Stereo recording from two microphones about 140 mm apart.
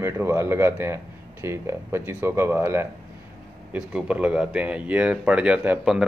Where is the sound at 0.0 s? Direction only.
20° right (ahead or behind).